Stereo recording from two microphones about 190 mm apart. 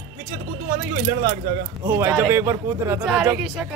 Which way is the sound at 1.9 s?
10° right (ahead or behind).